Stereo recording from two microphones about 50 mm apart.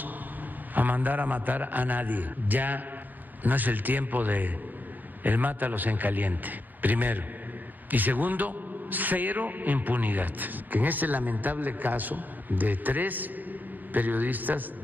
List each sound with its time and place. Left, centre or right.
0.7 s a man's voice: right